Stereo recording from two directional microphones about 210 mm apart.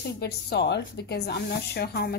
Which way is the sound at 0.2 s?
55° left (ahead or behind).